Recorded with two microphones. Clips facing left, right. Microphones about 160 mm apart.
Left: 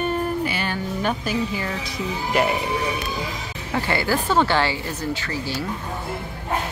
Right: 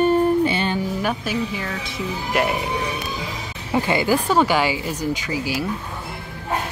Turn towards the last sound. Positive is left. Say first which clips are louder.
# right 3 dB
turn(degrees=-10)  # may be behind; listen again after turning